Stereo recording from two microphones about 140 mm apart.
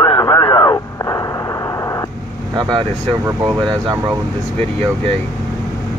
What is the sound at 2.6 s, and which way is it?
Speech, 30° right (ahead or behind).